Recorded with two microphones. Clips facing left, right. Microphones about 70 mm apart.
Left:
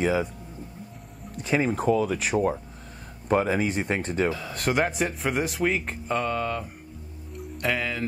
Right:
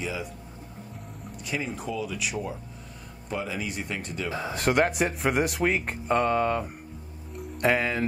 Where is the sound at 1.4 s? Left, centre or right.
Left.